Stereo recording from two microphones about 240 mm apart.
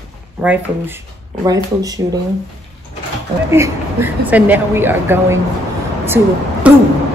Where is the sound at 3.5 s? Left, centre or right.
Centre.